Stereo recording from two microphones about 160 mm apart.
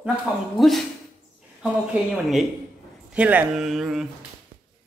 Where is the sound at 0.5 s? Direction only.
Centre (ahead or behind).